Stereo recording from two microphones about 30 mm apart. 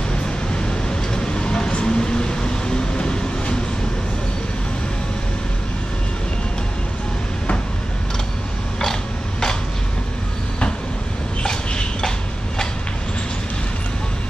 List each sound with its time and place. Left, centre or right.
0.6 s vehicle: left
1.8 s train: left
11.4 s a sound: left